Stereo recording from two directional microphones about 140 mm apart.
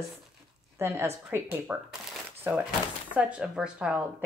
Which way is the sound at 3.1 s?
10° right (ahead or behind).